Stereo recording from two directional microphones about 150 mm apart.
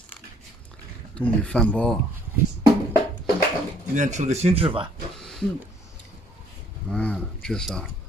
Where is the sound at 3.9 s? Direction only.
55° right (ahead or behind).